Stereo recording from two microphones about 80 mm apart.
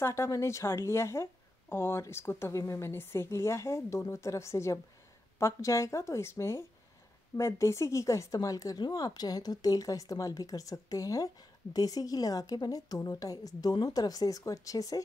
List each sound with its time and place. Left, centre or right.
0.0 s a woman's voice: left